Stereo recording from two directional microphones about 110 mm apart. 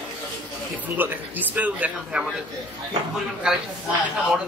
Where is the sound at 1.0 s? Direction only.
15° right (ahead or behind).